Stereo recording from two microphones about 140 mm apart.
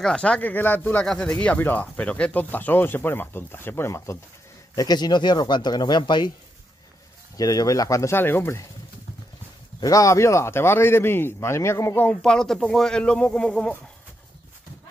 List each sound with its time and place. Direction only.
0.0 s a man's voice: 5° left (ahead or behind)
1.0 s a man's voice: 5° left (ahead or behind); by 6.3 s 30° left (ahead or behind)
7.3 s speech: 25° left (ahead or behind)
9.8 s a man's voice: 25° left (ahead or behind); by 13.7 s 5° left (ahead or behind)